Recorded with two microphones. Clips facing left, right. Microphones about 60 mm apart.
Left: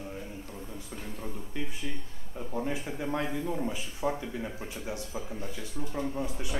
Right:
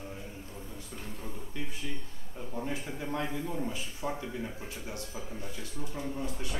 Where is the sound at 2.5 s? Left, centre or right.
Centre.